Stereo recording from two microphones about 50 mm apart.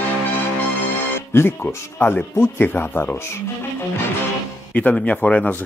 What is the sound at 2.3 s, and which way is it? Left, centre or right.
Speech, left.